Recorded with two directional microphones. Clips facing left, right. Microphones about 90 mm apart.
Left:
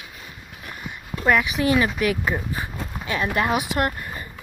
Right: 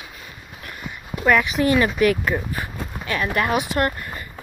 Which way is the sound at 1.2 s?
5° left (ahead or behind).